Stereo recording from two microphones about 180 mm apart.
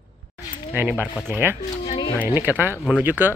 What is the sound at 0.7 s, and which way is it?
Speech, 10° right (ahead or behind).